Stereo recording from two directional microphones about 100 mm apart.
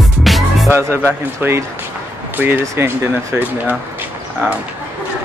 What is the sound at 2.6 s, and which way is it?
Speech, 30° right (ahead or behind).